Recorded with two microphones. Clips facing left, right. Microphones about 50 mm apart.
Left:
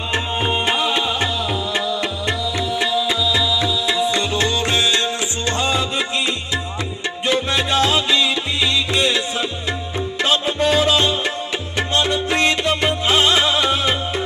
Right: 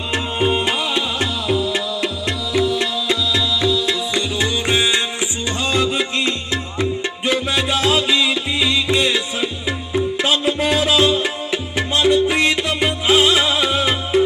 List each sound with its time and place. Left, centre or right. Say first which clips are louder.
0.1 s music: right 2 dB; centre
1.7 s music: even; centre
4.4 s music: even; centre
6.1 s music: right 1 dB; right
7.2 s music: even; centre
10.2 s music: left 3 dB; centre